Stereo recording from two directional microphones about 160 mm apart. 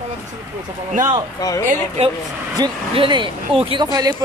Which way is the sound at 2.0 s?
45° right (ahead or behind).